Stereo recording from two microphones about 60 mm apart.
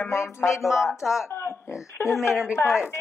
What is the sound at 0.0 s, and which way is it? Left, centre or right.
Speech, left.